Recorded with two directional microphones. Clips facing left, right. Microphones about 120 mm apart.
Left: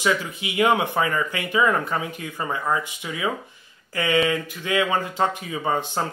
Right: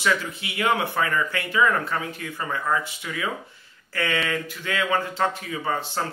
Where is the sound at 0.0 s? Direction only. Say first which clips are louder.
Left 1 dB; 15° left (ahead or behind).